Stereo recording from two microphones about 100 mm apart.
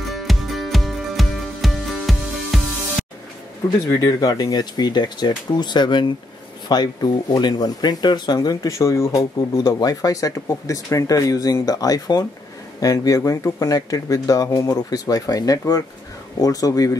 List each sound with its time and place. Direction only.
0.1 s music: centre (ahead or behind)
3.9 s speech: 40° left (ahead or behind)